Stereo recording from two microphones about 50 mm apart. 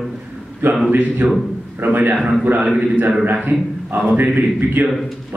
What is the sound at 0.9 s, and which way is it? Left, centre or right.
A man's voice, right.